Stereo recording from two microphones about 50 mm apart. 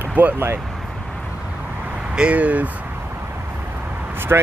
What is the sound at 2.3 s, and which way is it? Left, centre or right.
Speech, right.